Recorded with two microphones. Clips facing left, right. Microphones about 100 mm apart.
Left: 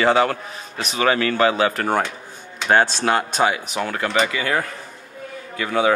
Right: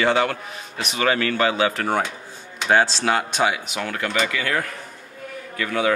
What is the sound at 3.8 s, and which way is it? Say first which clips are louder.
A man's voice: left 3 dB; 30° left (ahead or behind).